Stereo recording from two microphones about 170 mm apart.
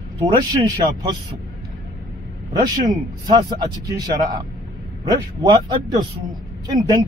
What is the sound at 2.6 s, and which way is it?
A man's voice, 25° right (ahead or behind).